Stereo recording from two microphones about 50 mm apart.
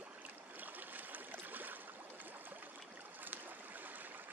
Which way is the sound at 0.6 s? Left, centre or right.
Right.